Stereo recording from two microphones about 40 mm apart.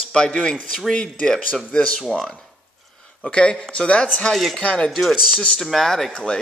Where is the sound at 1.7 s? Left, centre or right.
Left.